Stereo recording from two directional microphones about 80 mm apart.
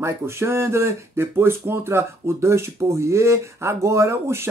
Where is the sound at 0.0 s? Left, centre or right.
Right.